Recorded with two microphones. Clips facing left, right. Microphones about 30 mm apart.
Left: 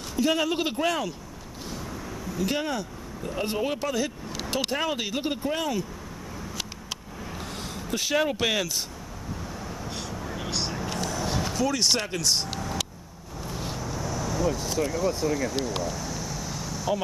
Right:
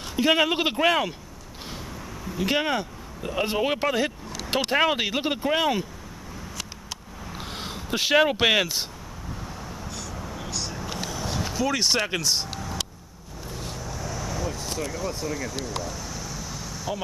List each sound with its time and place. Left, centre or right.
0.1 s speech: right
2.2 s speech: right
7.3 s speech: right
10.2 s vehicle: centre
10.9 s vehicle: centre
11.7 s speech: centre
12.4 s vehicle: centre
14.8 s speech: centre
15.6 s a sound: centre